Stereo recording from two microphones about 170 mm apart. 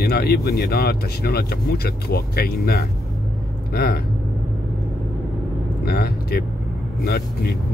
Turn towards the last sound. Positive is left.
turn(degrees=70)  # may be behind; listen again after turning